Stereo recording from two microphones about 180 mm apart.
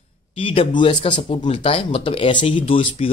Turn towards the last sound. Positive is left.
turn(degrees=30)  # may be behind; listen again after turning